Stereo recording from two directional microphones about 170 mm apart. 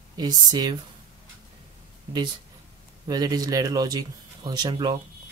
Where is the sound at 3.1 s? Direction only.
20° right (ahead or behind).